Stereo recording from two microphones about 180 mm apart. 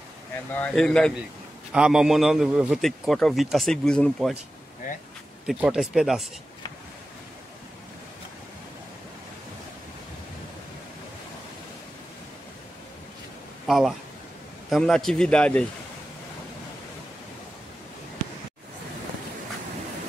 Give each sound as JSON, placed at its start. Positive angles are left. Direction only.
{"t": 0.6, "sound": "a man's voice", "side_deg": 5}
{"t": 4.8, "sound": "speech", "side_deg": 45}
{"t": 5.5, "sound": "a man's voice", "side_deg": -5}
{"t": 13.7, "sound": "a man's voice", "side_deg": 0}